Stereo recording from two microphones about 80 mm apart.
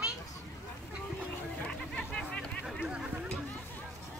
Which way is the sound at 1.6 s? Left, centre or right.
Centre.